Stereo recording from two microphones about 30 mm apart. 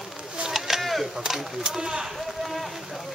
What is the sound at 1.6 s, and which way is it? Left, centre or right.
Speech, right.